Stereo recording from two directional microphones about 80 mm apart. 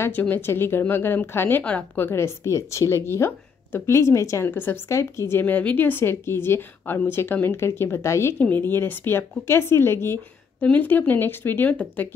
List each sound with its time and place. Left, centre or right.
0.1 s speech: left
1.6 s a woman's voice: centre
2.0 s speech: left
4.5 s speech: left
10.6 s speech: left